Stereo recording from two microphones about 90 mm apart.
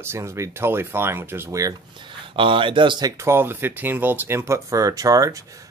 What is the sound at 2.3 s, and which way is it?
Speech, 70° right (ahead or behind).